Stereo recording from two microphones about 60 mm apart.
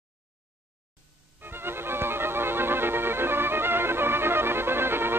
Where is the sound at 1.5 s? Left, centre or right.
Right.